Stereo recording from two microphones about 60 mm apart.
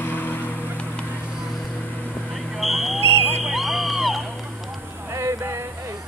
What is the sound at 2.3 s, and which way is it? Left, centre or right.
Smoke detector, centre.